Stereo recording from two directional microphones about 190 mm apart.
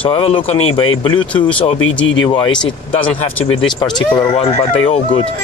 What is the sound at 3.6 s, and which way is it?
Speech, 20° left (ahead or behind).